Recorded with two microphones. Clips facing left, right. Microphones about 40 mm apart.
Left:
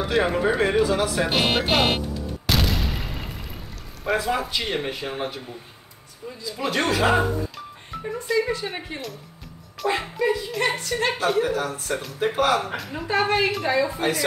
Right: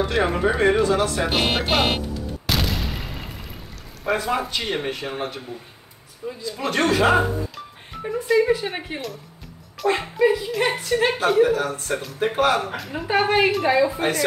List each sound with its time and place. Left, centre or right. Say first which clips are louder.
0.0 s speech: right 1 dB; centre
2.4 s a sound: left 1 dB; centre
4.0 s speech: right 1 dB; centre
6.2 s speech: right 5 dB; right
6.7 s a woman's voice: right 3 dB; centre
13.0 s a woman's voice: right 3 dB; centre